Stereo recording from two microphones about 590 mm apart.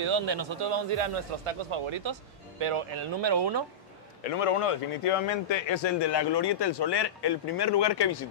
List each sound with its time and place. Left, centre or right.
0.0 s a man's voice: right
4.2 s speech: left